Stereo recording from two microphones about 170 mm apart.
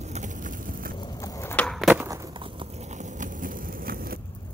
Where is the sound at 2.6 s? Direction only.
45° right (ahead or behind).